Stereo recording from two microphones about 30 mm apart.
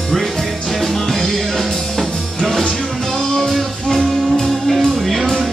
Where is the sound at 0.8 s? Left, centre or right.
Centre.